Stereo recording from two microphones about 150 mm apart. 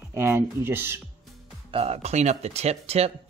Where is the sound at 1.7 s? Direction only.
45° right (ahead or behind).